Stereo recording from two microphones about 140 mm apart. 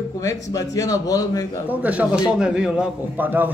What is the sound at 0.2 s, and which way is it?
Speech, 25° left (ahead or behind).